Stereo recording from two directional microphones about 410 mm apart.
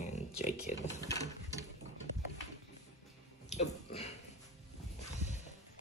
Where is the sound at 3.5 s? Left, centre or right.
Centre.